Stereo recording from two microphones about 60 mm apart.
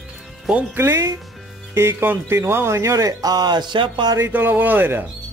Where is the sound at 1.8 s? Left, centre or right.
Right.